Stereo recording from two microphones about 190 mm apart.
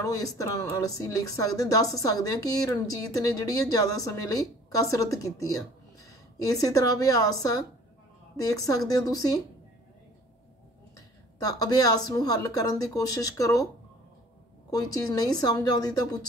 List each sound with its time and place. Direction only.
0.0 s speech: 20° left (ahead or behind)
11.4 s speech: 20° left (ahead or behind)
14.7 s speech: 20° left (ahead or behind)